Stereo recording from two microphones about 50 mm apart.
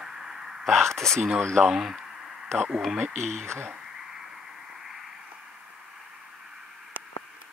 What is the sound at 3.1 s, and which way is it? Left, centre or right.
Speech, centre.